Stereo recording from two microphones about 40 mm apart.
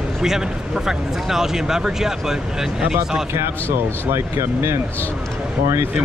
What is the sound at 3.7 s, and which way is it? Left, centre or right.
Speech, right.